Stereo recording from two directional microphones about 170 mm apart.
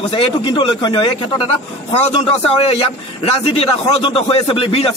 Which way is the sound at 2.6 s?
35° left (ahead or behind).